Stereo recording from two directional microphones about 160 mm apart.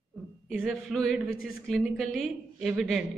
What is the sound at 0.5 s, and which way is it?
A woman's voice, centre (ahead or behind).